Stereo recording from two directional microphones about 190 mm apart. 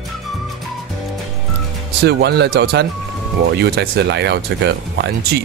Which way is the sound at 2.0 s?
60° right (ahead or behind).